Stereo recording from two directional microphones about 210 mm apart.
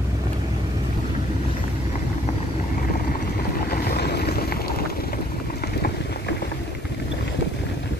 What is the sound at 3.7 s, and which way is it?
Boat, 50° left (ahead or behind).